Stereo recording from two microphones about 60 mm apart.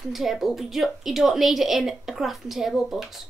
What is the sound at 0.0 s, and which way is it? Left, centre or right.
A woman's voice, centre.